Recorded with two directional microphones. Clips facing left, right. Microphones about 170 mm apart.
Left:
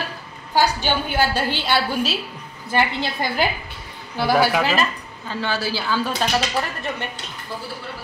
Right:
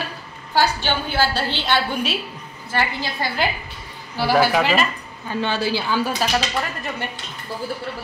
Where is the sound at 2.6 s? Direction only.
20° left (ahead or behind).